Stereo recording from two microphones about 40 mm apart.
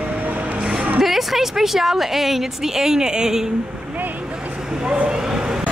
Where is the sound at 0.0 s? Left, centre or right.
Right.